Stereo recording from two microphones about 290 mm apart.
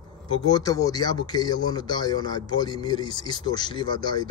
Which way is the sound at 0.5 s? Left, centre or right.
Centre.